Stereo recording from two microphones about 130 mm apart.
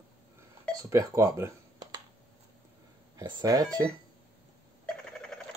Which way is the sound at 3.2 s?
30° right (ahead or behind).